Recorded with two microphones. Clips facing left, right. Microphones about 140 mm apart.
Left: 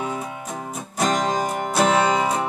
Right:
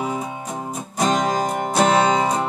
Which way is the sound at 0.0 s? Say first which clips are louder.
Right 2 dB; 5° right (ahead or behind).